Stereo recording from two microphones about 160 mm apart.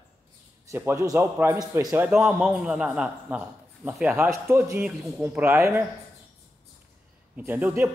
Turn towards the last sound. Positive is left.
turn(degrees=-10)  # may be behind; listen again after turning